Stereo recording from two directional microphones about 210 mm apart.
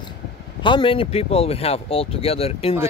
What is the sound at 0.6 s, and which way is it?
Speech, 25° left (ahead or behind).